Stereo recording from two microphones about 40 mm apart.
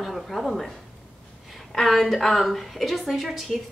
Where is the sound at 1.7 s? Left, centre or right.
Centre.